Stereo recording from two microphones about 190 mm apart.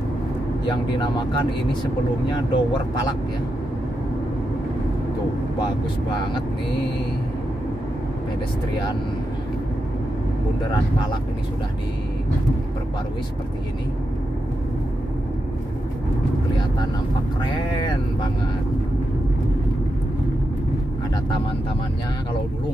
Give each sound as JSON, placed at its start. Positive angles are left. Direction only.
{"t": 0.7, "sound": "speech", "side_deg": 25}
{"t": 2.3, "sound": "speech", "side_deg": 25}
{"t": 17.4, "sound": "speech", "side_deg": 25}